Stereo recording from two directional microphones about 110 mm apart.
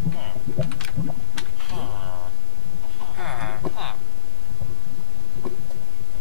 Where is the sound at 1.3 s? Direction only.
Centre (ahead or behind).